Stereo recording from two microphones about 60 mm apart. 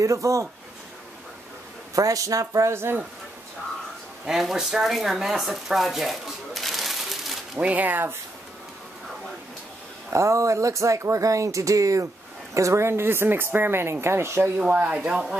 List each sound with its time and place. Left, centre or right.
0.0 s speech: right
2.0 s speech: right
2.7 s speech: right
4.3 s speech: centre
7.5 s speech: right
10.1 s speech: right
12.5 s speech: right
14.7 s speech: right
15.0 s speech: centre